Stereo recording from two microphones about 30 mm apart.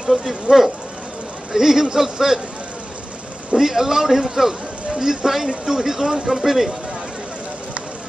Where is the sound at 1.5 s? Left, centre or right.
Centre.